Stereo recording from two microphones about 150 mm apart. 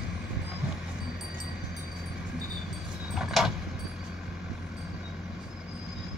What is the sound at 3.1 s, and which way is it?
Vehicle, centre (ahead or behind).